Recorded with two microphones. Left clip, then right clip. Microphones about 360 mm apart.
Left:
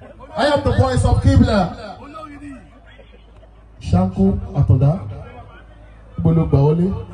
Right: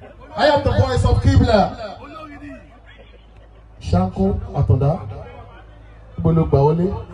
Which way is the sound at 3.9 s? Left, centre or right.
Centre.